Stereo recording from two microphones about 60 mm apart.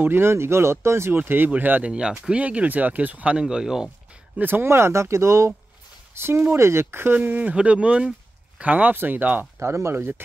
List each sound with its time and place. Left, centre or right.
0.0 s speech: right
1.5 s speech: right
1.9 s speech: centre
3.3 s speech: centre
4.4 s speech: right
4.6 s speech: right
6.1 s speech: right
9.6 s speech: right